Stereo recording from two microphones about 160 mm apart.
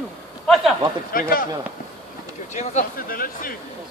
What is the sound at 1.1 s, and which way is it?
Speech, 65° left (ahead or behind).